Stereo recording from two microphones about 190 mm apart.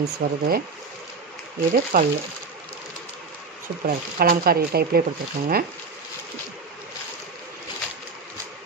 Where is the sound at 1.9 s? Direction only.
50° right (ahead or behind).